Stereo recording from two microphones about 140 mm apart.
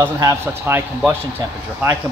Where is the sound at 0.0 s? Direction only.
25° right (ahead or behind).